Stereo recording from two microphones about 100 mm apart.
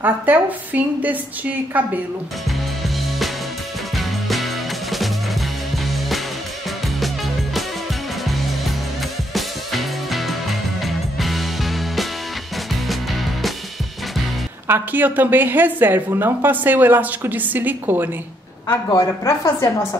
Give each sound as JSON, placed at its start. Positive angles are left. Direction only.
{"t": 0.0, "sound": "a woman's voice", "side_deg": -15}
{"t": 3.9, "sound": "music", "side_deg": 0}
{"t": 9.3, "sound": "music", "side_deg": 0}
{"t": 14.7, "sound": "speech", "side_deg": -20}
{"t": 18.9, "sound": "a woman's voice", "side_deg": 35}